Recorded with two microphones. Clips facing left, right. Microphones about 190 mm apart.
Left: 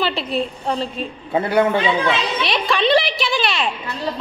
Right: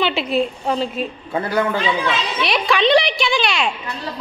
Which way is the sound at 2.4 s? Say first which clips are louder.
Right 3 dB; centre (ahead or behind).